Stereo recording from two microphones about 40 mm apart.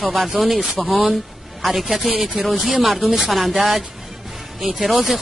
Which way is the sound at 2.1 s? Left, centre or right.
Centre.